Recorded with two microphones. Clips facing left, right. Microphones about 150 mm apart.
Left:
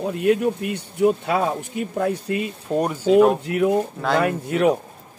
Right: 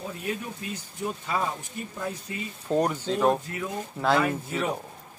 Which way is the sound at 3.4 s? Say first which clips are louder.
Left 14 dB; 70° left (ahead or behind).